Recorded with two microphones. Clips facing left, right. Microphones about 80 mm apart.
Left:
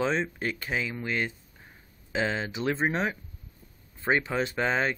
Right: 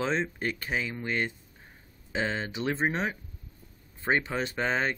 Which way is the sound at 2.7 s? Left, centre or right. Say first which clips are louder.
Left 2 dB; centre.